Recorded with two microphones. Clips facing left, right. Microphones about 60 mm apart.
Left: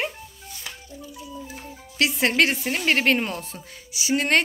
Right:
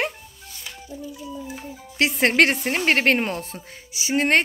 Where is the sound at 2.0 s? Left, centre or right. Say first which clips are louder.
Right 3 dB; right.